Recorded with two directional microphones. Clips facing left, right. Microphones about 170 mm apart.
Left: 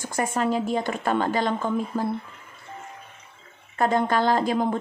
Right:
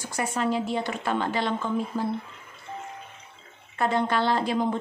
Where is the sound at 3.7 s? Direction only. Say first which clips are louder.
Left 3 dB; 45° left (ahead or behind).